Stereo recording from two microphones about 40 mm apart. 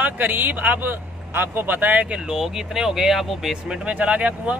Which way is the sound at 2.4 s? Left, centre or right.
Centre.